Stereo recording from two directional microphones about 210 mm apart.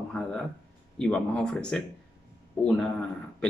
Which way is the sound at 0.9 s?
5° left (ahead or behind).